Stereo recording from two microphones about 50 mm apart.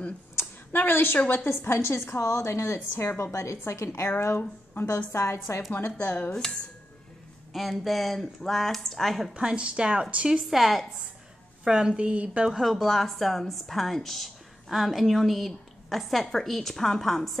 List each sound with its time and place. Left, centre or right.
0.7 s a woman's voice: left
5.7 s a woman's voice: left
5.9 s speech: left
7.5 s a woman's voice: centre
9.3 s a woman's voice: centre
10.5 s a woman's voice: centre
11.6 s a woman's voice: centre
12.4 s a woman's voice: centre